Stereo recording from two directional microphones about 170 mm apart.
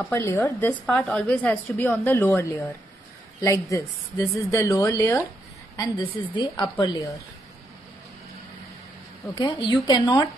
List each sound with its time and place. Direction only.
0.0 s a woman's voice: 15° left (ahead or behind)
9.3 s a woman's voice: 25° left (ahead or behind)